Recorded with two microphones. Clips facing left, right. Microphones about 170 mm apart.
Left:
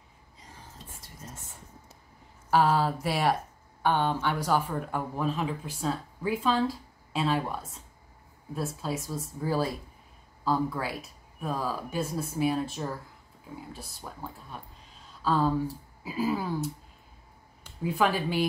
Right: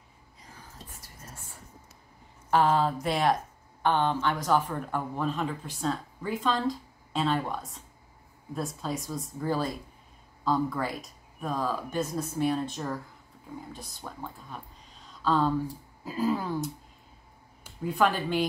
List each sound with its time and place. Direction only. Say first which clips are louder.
0.8 s whispering: left 2 dB; 25° left (ahead or behind)
2.5 s speech: even; 5° left (ahead or behind)
15.2 s speech: even; 5° left (ahead or behind)
17.8 s speech: even; 5° left (ahead or behind)